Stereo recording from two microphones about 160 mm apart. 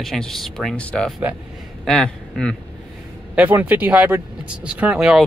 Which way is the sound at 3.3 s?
10° right (ahead or behind).